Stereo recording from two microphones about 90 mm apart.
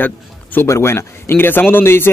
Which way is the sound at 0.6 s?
30° left (ahead or behind).